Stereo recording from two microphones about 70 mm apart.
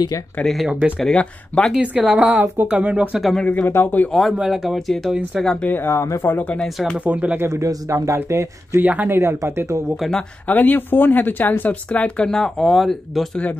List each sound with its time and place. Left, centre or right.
0.7 s speech: centre
1.1 s speech: centre
1.8 s speech: centre
3.2 s speech: centre
3.4 s speech: left
4.1 s speech: centre
5.9 s speech: left
7.1 s speech: right
7.3 s speech: right
8.7 s speech: right
9.1 s speech: right
10.5 s speech: left
12.3 s speech: centre